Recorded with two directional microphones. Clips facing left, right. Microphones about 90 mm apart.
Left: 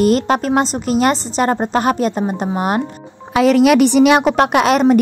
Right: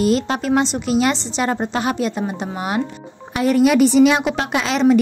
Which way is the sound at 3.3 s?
90° left.